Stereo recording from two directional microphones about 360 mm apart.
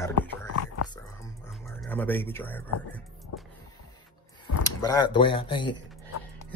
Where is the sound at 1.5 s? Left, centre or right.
Centre.